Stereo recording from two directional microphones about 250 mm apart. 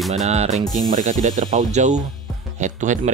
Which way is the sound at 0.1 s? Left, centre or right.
Right.